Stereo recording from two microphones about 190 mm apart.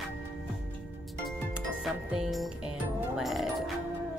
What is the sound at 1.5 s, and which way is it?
Music, 5° right (ahead or behind).